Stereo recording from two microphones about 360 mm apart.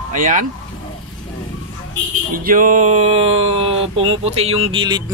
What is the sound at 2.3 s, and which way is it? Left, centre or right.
Speech, right.